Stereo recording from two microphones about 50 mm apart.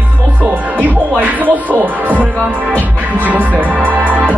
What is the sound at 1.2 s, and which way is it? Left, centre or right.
Speech, right.